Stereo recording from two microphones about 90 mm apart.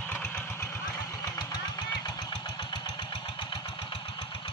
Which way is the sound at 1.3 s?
50° left (ahead or behind).